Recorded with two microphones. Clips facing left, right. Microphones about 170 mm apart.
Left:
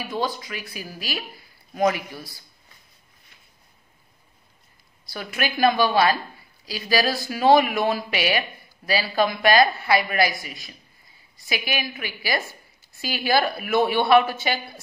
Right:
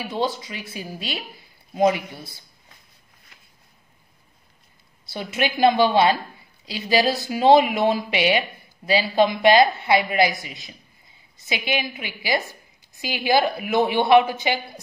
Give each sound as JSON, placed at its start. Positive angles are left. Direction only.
{"t": 0.0, "sound": "speech", "side_deg": -25}
{"t": 5.1, "sound": "speech", "side_deg": -25}